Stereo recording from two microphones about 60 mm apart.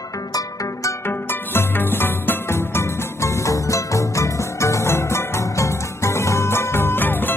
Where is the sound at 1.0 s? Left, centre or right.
Left.